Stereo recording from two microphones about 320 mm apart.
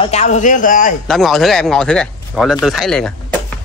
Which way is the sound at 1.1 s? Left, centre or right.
Centre.